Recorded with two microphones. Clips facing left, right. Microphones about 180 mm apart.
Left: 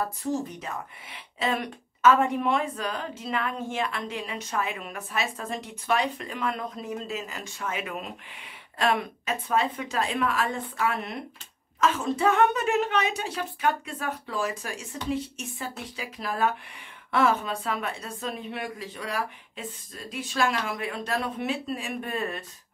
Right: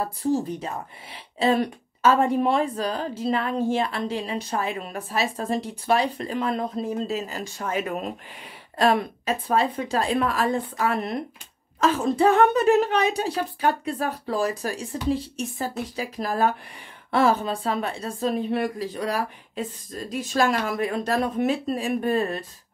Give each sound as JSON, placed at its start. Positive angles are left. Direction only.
{"t": 0.0, "sound": "speech", "side_deg": -30}